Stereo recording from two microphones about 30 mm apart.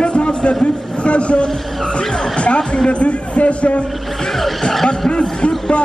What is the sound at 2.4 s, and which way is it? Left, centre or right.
Speech, left.